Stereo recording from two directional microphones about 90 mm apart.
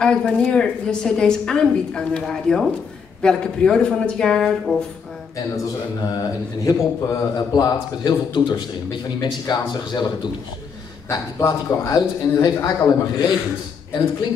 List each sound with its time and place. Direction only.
0.0 s a woman's voice: 10° left (ahead or behind)
6.6 s a man's voice: 35° left (ahead or behind); by 10.3 s 55° left (ahead or behind)
11.1 s a man's voice: 35° left (ahead or behind)